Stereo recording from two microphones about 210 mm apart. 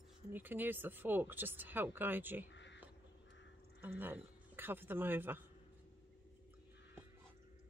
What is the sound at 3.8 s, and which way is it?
A man's voice, 10° right (ahead or behind).